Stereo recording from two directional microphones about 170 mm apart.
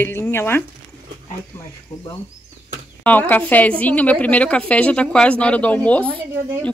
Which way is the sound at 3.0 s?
10° left (ahead or behind).